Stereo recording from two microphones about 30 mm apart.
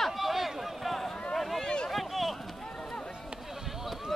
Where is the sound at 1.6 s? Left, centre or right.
Left.